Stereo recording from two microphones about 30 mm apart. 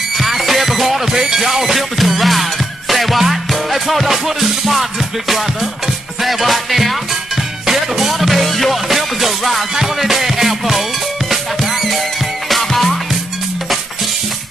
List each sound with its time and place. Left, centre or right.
0.2 s music: centre
1.1 s music: right
1.4 s music: centre
6.2 s music: centre
12.4 s music: centre